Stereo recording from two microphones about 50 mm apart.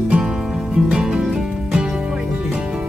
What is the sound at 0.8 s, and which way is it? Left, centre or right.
Music, centre.